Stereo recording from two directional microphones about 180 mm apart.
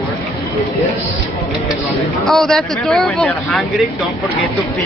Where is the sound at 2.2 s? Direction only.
Centre (ahead or behind).